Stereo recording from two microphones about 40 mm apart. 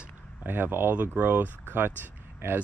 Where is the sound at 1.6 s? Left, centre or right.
Right.